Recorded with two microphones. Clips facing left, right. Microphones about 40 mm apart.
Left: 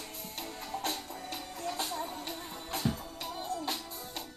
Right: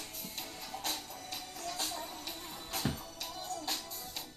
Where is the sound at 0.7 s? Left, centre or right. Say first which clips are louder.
Left 4 dB; left.